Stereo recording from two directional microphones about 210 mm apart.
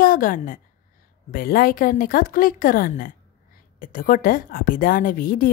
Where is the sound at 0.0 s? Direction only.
40° left (ahead or behind).